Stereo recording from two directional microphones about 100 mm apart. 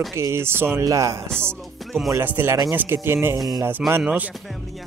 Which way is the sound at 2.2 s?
20° right (ahead or behind).